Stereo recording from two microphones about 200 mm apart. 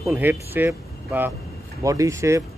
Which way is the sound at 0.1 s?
10° right (ahead or behind).